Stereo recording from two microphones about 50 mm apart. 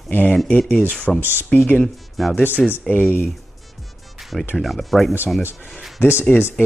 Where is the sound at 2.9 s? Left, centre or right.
Left.